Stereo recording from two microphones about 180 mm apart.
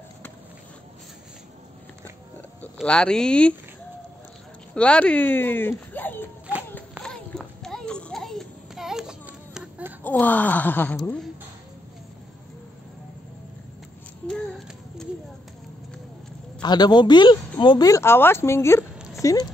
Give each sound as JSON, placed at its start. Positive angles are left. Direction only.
{"t": 2.6, "sound": "speech", "side_deg": 5}
{"t": 4.7, "sound": "speech", "side_deg": 5}
{"t": 6.7, "sound": "children playing", "side_deg": 5}
{"t": 10.0, "sound": "speech", "side_deg": 10}
{"t": 16.6, "sound": "speech", "side_deg": 25}
{"t": 18.9, "sound": "a sound", "side_deg": 0}